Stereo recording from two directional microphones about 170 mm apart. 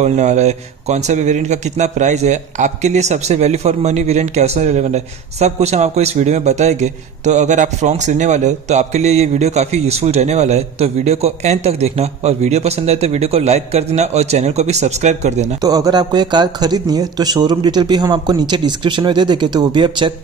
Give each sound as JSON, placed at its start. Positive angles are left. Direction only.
{"t": 0.0, "sound": "a man's voice", "side_deg": -45}
{"t": 15.6, "sound": "speech", "side_deg": -20}